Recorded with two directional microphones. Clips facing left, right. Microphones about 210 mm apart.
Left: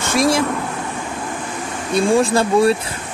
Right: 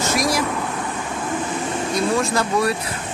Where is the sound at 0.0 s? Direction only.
30° left (ahead or behind).